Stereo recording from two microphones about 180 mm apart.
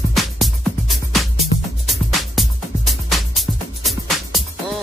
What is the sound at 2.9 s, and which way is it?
Music, centre (ahead or behind).